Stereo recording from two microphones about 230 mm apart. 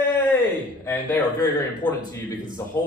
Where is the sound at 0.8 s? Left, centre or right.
Centre.